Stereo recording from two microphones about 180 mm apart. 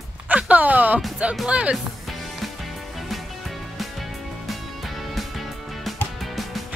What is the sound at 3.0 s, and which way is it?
Music, centre (ahead or behind).